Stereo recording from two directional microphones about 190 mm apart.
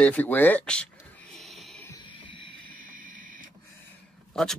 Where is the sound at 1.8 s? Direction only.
20° left (ahead or behind).